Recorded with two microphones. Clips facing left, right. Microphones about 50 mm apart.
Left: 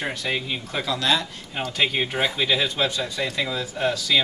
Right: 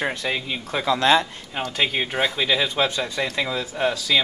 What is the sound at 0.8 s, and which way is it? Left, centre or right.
Speech, right.